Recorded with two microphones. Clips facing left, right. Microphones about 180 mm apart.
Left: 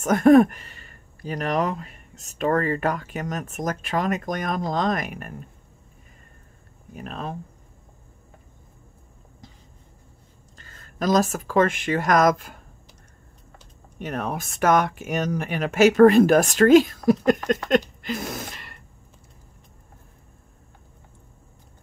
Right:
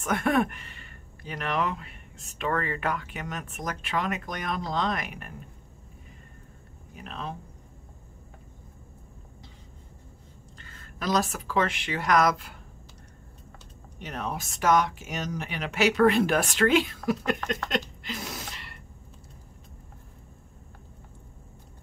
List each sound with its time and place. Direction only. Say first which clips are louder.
0.0 s speech: left 11 dB; 40° left (ahead or behind)
7.0 s speech: left 4 dB; 45° left (ahead or behind)
10.6 s speech: left 7 dB; 45° left (ahead or behind)
13.9 s speech: left 5 dB; 50° left (ahead or behind)